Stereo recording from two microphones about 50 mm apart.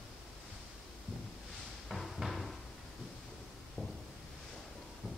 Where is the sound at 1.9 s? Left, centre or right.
Centre.